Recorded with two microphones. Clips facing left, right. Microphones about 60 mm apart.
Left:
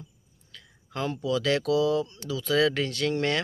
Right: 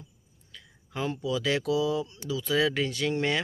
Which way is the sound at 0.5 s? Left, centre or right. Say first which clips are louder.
Left 1 dB; centre.